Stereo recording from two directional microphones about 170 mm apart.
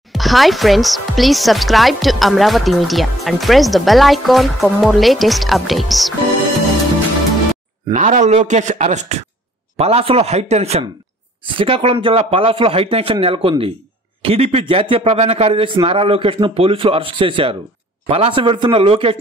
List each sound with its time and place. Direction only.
0.1 s speech: centre (ahead or behind)
7.9 s a man's voice: 45° right (ahead or behind)